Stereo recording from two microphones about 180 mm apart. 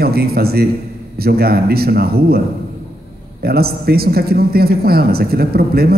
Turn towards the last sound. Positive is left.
turn(degrees=-60)  # may be behind; listen again after turning